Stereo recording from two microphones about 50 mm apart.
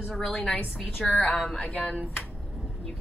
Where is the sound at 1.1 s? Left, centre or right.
Left.